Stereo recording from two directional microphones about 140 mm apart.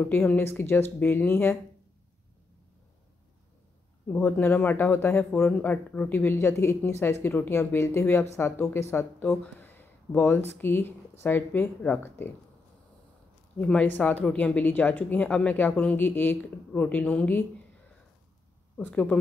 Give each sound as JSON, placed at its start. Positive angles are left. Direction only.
{"t": 0.0, "sound": "speech", "side_deg": 10}
{"t": 4.1, "sound": "speech", "side_deg": 15}
{"t": 13.6, "sound": "speech", "side_deg": 10}
{"t": 18.8, "sound": "speech", "side_deg": 10}